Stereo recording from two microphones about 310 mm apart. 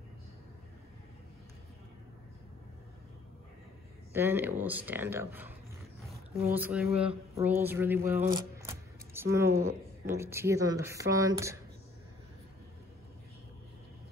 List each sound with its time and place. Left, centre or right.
4.1 s speech: centre
6.5 s speech: centre
6.9 s speech: centre
7.4 s speech: centre